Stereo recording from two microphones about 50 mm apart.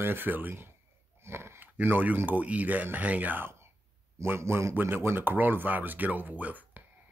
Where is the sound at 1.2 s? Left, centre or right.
Right.